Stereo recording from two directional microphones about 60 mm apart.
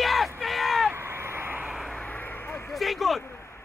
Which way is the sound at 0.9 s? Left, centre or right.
Right.